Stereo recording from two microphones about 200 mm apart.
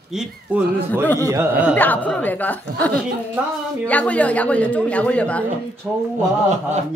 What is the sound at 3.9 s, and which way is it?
A man's voice, 5° left (ahead or behind).